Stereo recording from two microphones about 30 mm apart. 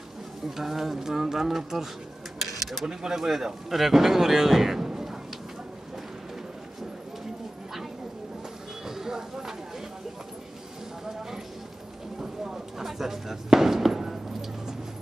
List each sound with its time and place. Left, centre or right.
0.5 s speech: centre
2.4 s a sound: centre
2.9 s speech: right
3.2 s speech: centre
4.8 s a sound: right
8.8 s vehicle: centre
12.2 s fireworks: centre